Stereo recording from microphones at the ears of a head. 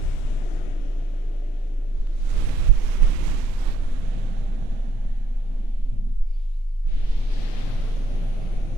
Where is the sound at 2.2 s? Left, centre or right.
Right.